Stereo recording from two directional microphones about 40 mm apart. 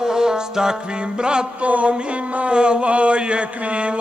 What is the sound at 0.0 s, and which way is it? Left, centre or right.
Music, centre.